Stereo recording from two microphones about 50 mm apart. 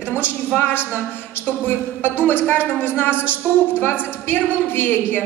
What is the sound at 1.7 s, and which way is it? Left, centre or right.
A woman's voice, left.